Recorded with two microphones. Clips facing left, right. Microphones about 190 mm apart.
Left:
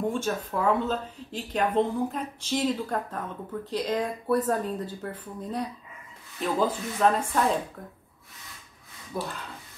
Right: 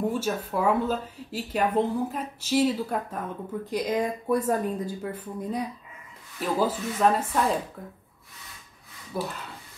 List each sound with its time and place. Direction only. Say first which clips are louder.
0.0 s speech: right 1 dB; 5° right (ahead or behind)
9.1 s speech: right 2 dB; 5° right (ahead or behind)